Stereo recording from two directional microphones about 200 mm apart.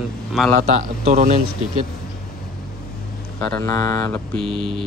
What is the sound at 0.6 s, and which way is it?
Speech, 40° right (ahead or behind).